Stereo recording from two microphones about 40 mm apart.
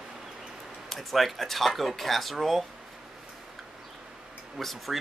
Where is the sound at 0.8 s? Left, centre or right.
Centre.